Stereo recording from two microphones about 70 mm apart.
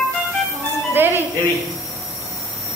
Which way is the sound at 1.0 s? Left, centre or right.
Right.